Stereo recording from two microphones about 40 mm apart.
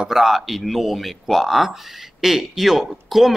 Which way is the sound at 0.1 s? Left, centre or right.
Centre.